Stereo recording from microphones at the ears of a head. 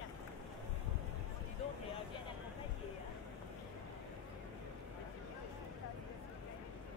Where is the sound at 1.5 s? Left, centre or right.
Left.